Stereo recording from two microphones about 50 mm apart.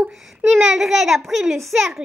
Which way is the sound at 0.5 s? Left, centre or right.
Centre.